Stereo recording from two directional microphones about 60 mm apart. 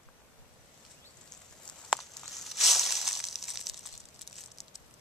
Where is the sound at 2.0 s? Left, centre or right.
Centre.